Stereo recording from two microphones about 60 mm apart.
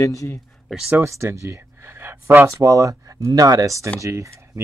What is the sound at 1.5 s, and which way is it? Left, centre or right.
Gasp, right.